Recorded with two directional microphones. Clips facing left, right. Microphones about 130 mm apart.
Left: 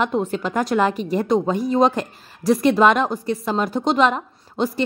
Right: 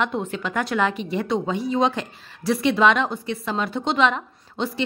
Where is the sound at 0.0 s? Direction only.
40° left (ahead or behind).